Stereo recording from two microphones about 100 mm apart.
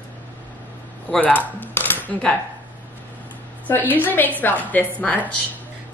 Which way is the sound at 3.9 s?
20° left (ahead or behind).